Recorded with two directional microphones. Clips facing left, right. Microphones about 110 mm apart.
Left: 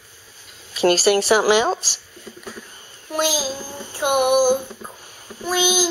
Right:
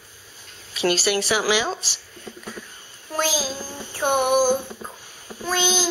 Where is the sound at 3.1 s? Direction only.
15° left (ahead or behind).